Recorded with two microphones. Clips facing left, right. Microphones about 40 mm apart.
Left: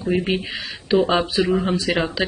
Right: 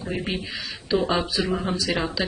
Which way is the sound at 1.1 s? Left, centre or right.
Left.